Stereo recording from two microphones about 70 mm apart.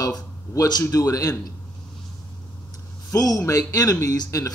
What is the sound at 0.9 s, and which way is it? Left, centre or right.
Speech, left.